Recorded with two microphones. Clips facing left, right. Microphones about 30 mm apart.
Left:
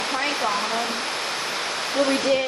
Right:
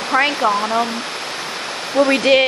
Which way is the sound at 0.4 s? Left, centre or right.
Right.